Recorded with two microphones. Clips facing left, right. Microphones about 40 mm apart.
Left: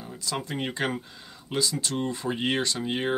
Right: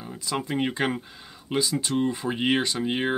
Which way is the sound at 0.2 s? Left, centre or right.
Right.